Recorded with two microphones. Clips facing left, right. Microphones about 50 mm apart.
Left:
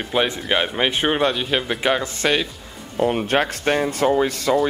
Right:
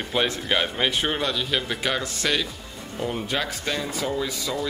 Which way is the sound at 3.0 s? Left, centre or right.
Left.